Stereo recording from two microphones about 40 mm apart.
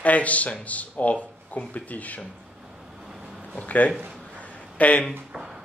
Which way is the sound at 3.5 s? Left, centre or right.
Left.